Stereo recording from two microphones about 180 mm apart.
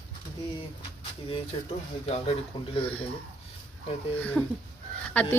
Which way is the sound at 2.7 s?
30° left (ahead or behind).